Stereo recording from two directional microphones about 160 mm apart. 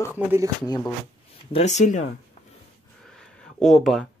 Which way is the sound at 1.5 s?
45° left (ahead or behind).